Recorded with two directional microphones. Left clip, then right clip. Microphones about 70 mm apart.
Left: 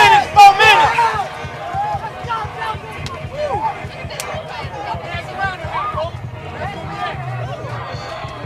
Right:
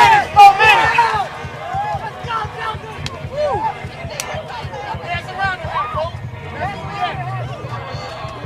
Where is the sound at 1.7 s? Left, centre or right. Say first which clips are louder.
Even; centre.